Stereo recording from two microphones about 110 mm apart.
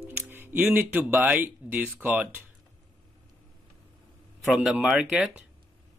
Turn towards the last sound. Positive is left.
turn(degrees=-5)  # may be behind; listen again after turning